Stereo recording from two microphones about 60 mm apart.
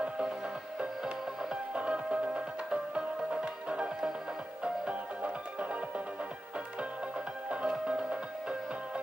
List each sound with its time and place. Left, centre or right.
0.7 s music: centre
7.4 s music: centre